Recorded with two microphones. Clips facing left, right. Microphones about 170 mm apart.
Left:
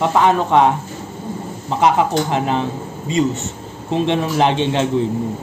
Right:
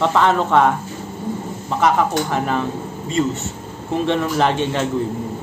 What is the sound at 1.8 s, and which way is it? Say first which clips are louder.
A man's voice: left 2 dB; 20° left (ahead or behind).